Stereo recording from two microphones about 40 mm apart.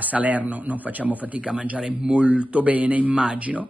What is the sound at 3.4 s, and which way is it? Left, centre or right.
Speech, right.